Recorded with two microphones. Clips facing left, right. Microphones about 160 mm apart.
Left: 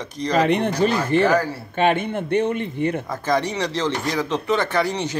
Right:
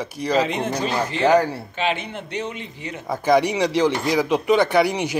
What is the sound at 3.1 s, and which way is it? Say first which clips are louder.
A man's voice: right 4 dB; 10° right (ahead or behind).